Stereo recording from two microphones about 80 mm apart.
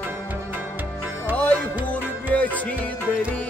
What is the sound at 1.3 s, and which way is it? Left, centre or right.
Music, centre.